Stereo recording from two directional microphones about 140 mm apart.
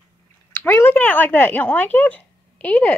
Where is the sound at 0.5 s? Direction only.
15° left (ahead or behind).